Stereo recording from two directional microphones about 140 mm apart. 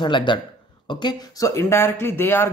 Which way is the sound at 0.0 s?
35° left (ahead or behind).